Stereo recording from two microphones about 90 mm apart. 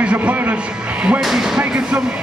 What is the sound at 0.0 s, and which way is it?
Speech, 15° right (ahead or behind).